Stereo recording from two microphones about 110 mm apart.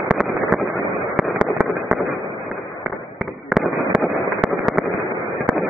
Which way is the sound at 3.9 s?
15° right (ahead or behind).